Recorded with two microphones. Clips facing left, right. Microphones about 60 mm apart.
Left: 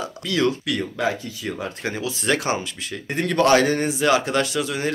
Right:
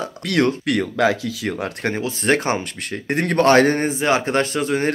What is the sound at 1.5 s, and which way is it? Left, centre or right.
Speech, right.